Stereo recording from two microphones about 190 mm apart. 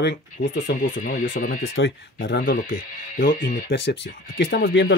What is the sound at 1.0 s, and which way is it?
Speech, 45° left (ahead or behind).